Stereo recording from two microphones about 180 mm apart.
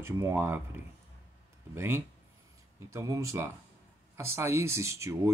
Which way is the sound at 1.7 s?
15° right (ahead or behind).